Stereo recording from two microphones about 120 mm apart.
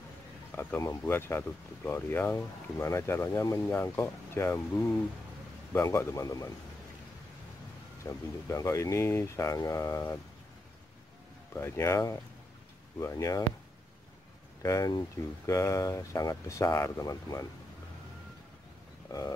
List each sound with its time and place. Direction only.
0.5 s speech: 15° left (ahead or behind)
8.0 s speech: 25° left (ahead or behind)
11.5 s speech: 20° left (ahead or behind)
14.6 s speech: 25° left (ahead or behind)
19.1 s wild animals: 30° left (ahead or behind)